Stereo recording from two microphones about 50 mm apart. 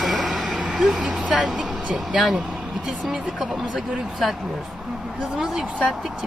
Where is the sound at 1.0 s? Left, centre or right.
Centre.